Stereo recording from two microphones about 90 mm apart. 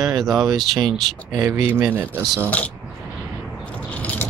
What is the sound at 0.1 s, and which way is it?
Speech, centre (ahead or behind).